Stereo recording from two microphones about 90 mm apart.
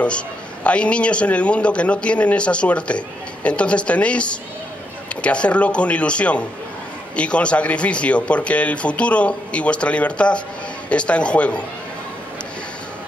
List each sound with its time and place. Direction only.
0.7 s speech: 10° left (ahead or behind)